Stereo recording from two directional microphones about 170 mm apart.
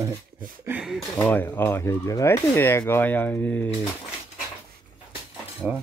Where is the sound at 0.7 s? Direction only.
5° right (ahead or behind).